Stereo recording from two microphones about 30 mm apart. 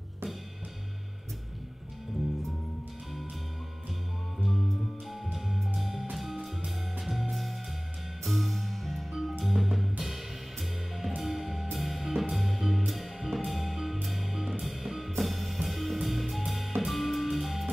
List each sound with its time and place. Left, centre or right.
5.3 s music: centre